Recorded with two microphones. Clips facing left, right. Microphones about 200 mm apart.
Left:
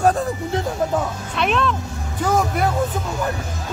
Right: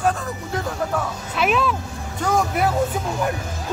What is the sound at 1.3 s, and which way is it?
Speech, 5° right (ahead or behind).